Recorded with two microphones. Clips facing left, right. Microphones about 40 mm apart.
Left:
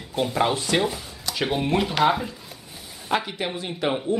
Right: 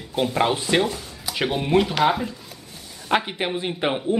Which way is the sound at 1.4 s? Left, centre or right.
Centre.